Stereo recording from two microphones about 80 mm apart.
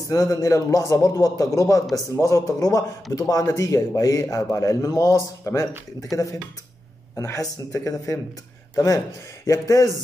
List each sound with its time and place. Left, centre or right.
0.1 s a man's voice: left
7.2 s a man's voice: left